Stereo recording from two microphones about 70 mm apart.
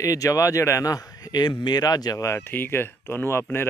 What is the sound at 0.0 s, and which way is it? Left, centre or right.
Speech, left.